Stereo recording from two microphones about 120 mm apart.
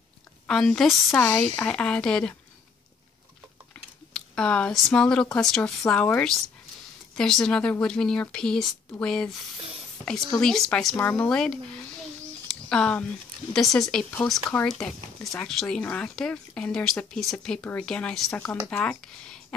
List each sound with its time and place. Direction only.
0.5 s speech: 5° left (ahead or behind)
3.7 s speech: 10° left (ahead or behind)
9.6 s a sound: 55° right (ahead or behind)
10.0 s speech: 5° left (ahead or behind)
12.4 s a sound: 5° left (ahead or behind)
13.5 s speech: 5° left (ahead or behind)